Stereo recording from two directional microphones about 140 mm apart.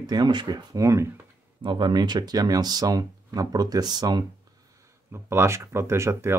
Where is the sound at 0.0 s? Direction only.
30° right (ahead or behind).